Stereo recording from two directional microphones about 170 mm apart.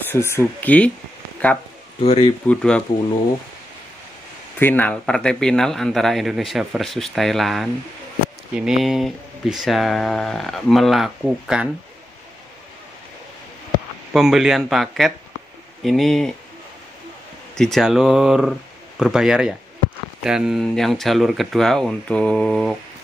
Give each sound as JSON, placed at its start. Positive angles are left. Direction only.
{"t": 0.1, "sound": "speech", "side_deg": 15}
{"t": 2.0, "sound": "speech", "side_deg": 35}
{"t": 2.4, "sound": "speech", "side_deg": 5}
{"t": 4.6, "sound": "speech", "side_deg": 10}
{"t": 14.1, "sound": "speech", "side_deg": 0}
{"t": 17.6, "sound": "speech", "side_deg": 0}